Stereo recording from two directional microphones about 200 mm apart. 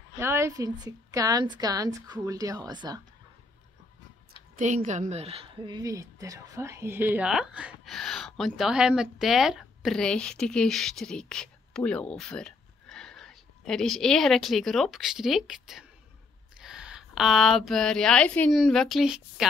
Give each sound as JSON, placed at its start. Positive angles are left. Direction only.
{"t": 0.2, "sound": "a woman's voice", "side_deg": -15}
{"t": 4.6, "sound": "a woman's voice", "side_deg": -35}